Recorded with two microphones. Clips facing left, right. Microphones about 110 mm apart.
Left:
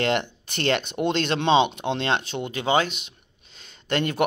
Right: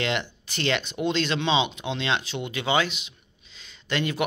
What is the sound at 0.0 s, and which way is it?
Speech, 50° left (ahead or behind).